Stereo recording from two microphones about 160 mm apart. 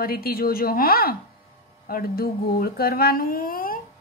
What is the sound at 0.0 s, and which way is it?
A woman's voice, 70° left (ahead or behind).